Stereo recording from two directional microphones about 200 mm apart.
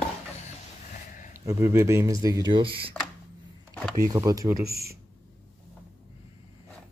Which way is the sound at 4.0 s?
15° right (ahead or behind).